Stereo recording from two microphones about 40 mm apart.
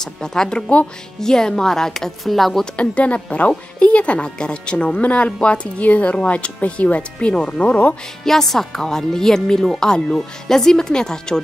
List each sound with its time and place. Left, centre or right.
0.0 s a woman's voice: centre
2.6 s speech: left
8.2 s a woman's voice: centre